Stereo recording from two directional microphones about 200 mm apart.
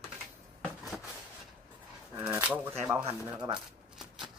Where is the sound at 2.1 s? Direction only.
10° right (ahead or behind).